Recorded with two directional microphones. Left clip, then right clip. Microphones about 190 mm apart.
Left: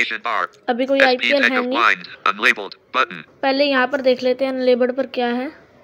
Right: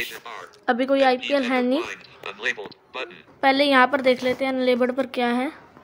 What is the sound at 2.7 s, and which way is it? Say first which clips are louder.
Speech: left 13 dB; 90° left.